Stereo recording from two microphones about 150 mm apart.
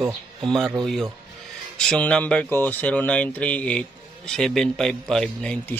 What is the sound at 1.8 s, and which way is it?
Speech, 5° left (ahead or behind).